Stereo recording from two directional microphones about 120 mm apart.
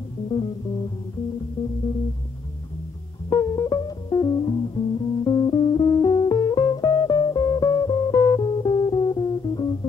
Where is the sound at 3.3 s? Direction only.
35° left (ahead or behind).